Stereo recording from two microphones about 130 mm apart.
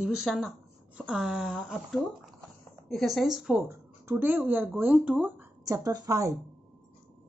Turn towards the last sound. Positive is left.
turn(degrees=-25)  # may be behind; listen again after turning